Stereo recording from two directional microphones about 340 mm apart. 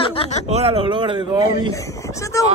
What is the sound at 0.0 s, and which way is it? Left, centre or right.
Speech, centre.